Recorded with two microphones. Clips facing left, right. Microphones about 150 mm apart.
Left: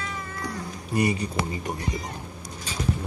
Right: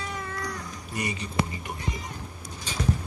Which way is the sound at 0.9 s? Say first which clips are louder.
Left 8 dB; 30° left (ahead or behind).